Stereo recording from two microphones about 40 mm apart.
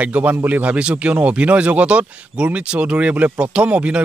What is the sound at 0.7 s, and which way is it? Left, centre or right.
Speech, right.